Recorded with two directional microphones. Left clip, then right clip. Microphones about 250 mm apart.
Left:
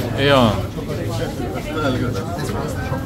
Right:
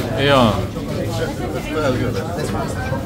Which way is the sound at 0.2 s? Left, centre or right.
Centre.